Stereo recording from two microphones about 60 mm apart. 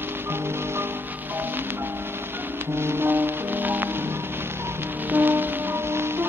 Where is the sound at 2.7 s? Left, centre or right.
Right.